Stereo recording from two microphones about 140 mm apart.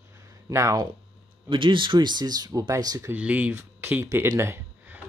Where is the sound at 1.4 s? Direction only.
35° right (ahead or behind).